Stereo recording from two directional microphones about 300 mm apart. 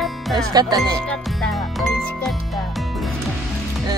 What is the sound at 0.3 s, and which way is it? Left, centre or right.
Speech, centre.